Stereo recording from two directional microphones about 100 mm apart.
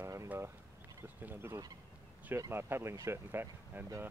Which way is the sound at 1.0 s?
20° right (ahead or behind).